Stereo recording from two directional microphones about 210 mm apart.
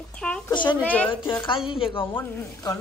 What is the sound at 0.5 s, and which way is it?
Speech, 20° left (ahead or behind).